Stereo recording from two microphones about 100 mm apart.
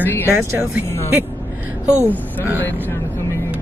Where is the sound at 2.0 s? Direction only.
20° right (ahead or behind).